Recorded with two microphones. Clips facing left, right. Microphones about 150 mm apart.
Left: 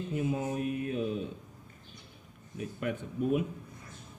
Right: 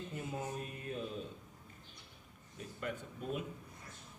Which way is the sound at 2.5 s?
65° left (ahead or behind).